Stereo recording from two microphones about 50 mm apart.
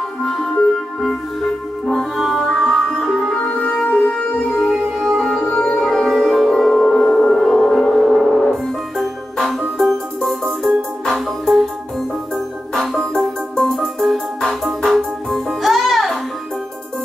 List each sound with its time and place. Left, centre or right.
0.2 s music: centre
3.3 s music: left
4.9 s music: centre
5.4 s music: centre
12.7 s music: centre